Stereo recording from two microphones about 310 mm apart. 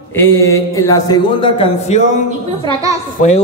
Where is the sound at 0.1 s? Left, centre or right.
Centre.